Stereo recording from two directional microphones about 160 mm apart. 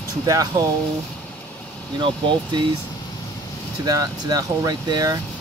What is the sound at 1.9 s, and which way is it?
Speech, 30° right (ahead or behind).